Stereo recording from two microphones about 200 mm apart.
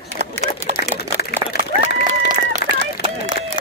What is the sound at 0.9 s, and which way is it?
Speech, 55° left (ahead or behind).